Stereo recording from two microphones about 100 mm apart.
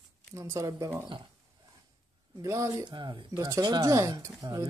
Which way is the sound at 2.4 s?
30° right (ahead or behind).